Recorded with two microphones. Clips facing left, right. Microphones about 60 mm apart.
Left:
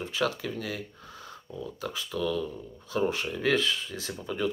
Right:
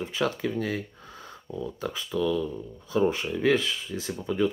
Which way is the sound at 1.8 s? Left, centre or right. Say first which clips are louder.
Right 2 dB; right.